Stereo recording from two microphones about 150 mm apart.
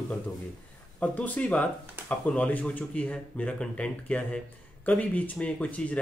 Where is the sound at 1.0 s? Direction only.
10° left (ahead or behind).